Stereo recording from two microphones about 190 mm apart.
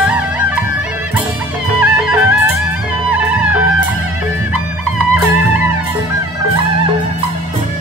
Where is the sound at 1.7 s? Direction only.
5° right (ahead or behind).